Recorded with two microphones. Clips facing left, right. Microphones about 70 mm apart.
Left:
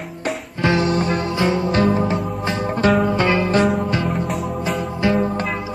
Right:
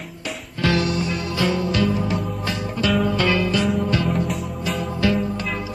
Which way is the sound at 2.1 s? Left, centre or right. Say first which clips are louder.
Left 3 dB; left.